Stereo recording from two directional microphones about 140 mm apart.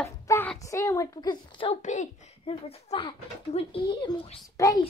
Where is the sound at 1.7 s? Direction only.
60° left (ahead or behind).